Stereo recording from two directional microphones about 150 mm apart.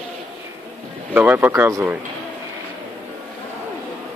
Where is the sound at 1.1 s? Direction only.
10° right (ahead or behind).